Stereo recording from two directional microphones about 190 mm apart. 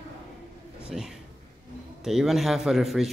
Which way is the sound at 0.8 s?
5° right (ahead or behind).